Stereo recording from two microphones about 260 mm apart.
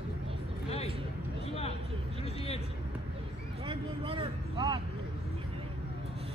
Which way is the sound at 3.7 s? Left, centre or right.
Right.